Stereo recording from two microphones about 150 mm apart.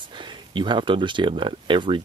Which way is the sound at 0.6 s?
30° right (ahead or behind).